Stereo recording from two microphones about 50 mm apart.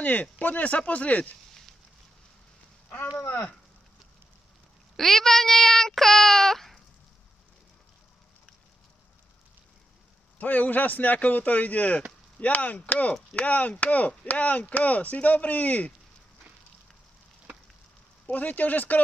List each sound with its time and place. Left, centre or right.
0.0 s speech: left
4.9 s speech: centre
10.4 s speech: left
18.2 s speech: left